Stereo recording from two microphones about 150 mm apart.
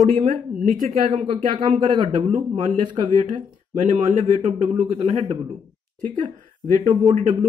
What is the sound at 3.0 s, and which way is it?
Speech, 55° right (ahead or behind).